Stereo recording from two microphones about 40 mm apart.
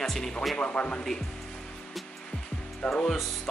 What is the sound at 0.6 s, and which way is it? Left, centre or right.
Speech, left.